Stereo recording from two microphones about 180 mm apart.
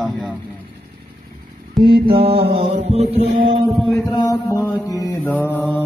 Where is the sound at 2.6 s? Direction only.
35° right (ahead or behind).